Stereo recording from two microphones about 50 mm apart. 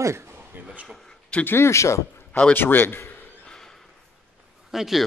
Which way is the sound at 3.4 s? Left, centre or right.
Centre.